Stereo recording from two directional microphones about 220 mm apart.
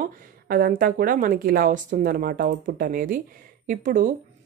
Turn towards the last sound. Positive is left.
turn(degrees=-35)  # may be behind; listen again after turning